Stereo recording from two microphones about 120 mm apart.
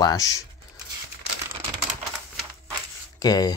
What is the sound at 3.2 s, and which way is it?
Speech, 35° left (ahead or behind).